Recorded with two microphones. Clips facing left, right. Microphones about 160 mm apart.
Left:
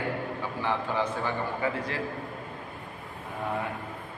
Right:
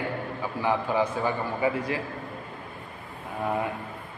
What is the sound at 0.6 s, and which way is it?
A man's voice, 10° right (ahead or behind).